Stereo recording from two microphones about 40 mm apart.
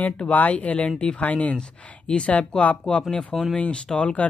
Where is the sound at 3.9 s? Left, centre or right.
Left.